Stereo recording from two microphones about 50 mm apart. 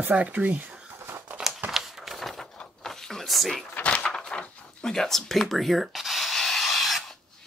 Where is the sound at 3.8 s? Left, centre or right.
Left; by 7.2 s centre.